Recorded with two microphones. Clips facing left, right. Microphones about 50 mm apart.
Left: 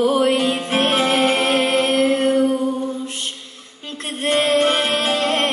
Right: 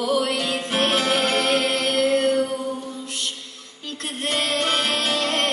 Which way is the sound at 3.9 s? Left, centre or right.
Left.